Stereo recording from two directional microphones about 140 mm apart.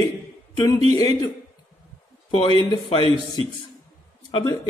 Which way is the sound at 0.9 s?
25° left (ahead or behind).